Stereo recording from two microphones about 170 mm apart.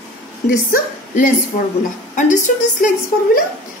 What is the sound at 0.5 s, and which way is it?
A woman's voice, 55° left (ahead or behind).